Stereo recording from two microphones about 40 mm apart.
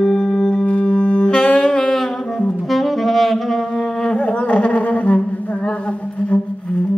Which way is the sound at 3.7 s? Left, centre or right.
Left.